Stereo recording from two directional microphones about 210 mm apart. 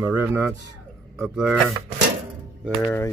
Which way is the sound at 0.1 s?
10° right (ahead or behind).